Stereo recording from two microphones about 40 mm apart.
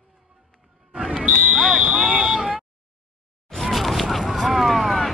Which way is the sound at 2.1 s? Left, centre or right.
Centre.